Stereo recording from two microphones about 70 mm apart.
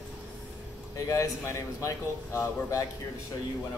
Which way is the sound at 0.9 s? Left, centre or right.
Left.